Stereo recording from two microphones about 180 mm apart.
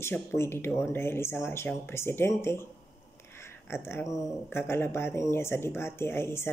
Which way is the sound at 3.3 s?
15° left (ahead or behind).